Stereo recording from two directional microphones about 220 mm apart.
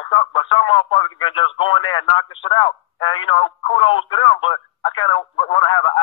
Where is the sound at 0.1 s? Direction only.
25° left (ahead or behind).